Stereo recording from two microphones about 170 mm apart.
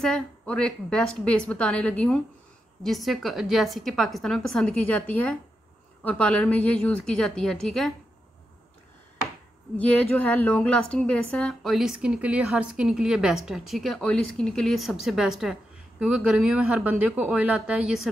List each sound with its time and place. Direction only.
0.0 s a woman's voice: 5° left (ahead or behind)
9.8 s a woman's voice: 5° left (ahead or behind)